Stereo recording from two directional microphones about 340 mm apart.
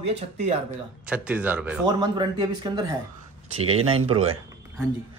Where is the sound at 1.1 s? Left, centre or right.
Centre.